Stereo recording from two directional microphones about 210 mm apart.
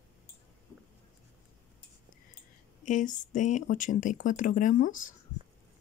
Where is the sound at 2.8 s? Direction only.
35° left (ahead or behind).